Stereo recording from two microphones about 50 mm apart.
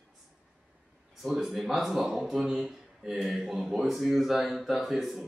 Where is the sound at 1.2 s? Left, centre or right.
Centre.